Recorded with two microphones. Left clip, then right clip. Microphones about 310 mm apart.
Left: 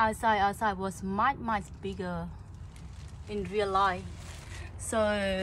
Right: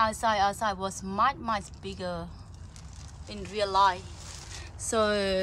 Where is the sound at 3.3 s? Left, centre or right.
Centre.